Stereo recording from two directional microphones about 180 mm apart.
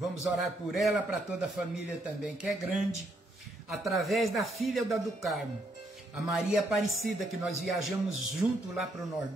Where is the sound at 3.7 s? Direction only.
Centre (ahead or behind).